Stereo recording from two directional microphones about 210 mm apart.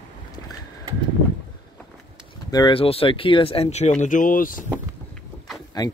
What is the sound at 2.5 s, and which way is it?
Speech, 25° left (ahead or behind).